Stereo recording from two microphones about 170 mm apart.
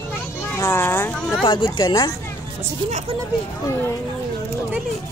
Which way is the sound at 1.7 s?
25° left (ahead or behind).